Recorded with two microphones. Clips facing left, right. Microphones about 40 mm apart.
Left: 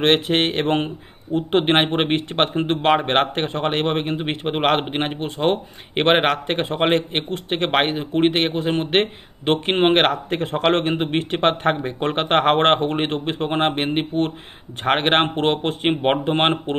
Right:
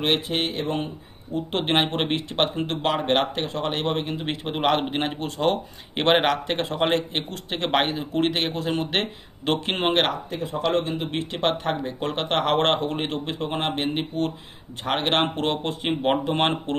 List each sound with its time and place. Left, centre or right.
0.0 s speech: left
1.5 s a man's voice: left
10.3 s speech: left
11.1 s a man's voice: left